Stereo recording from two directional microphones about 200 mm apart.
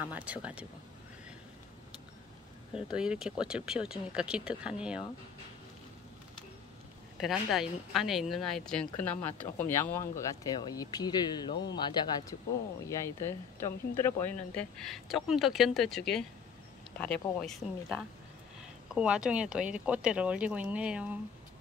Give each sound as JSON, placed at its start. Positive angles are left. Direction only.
{"t": 0.0, "sound": "speech", "side_deg": -5}
{"t": 2.7, "sound": "speech", "side_deg": -5}
{"t": 7.2, "sound": "speech", "side_deg": 0}
{"t": 17.0, "sound": "speech", "side_deg": 5}